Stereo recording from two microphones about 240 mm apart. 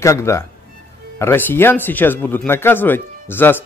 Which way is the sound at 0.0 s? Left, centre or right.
Centre.